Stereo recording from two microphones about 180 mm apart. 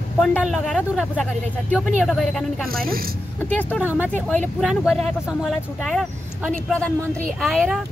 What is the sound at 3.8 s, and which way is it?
Speech, 10° right (ahead or behind).